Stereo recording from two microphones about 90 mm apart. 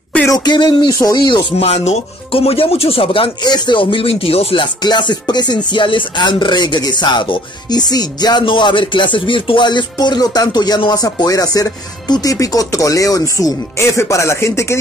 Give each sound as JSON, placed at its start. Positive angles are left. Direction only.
{"t": 0.3, "sound": "music", "side_deg": 55}
{"t": 0.9, "sound": "speech", "side_deg": 40}
{"t": 2.3, "sound": "speech", "side_deg": 90}
{"t": 3.4, "sound": "speech", "side_deg": 55}
{"t": 4.8, "sound": "music", "side_deg": 55}
{"t": 5.7, "sound": "speech", "side_deg": 65}